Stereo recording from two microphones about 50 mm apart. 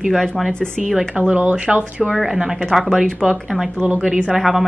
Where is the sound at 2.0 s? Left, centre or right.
Centre.